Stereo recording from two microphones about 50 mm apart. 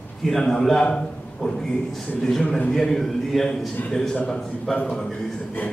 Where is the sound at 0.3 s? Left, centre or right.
Centre.